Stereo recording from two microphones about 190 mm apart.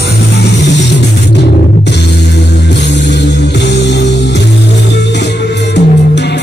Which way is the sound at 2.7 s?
65° left (ahead or behind).